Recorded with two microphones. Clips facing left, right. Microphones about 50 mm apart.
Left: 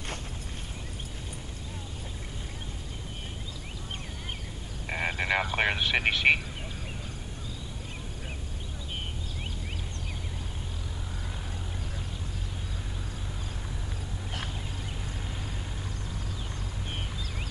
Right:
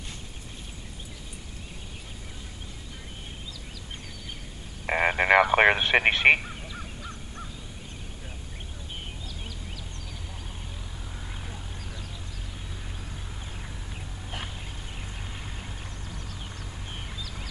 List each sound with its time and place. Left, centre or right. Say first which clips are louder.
4.8 s speech: right 7 dB; right